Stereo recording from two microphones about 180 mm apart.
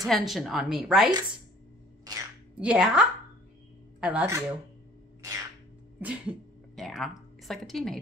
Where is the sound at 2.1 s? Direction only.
20° right (ahead or behind).